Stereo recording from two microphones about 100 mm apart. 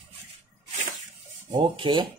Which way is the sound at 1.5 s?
55° right (ahead or behind).